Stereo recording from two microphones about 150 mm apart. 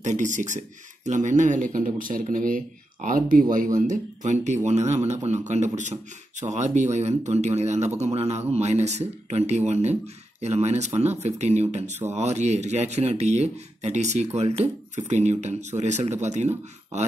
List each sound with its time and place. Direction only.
0.0 s speech: 55° right (ahead or behind)